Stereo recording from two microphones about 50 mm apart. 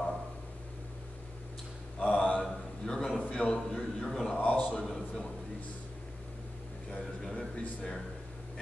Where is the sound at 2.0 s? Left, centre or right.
Left.